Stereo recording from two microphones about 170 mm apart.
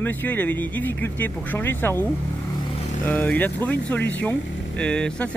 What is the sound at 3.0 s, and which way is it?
Speech, 10° left (ahead or behind).